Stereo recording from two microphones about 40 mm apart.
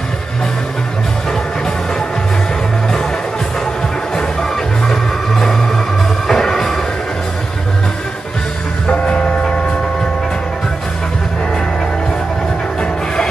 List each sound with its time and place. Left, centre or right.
4.4 s music: centre
8.8 s train: left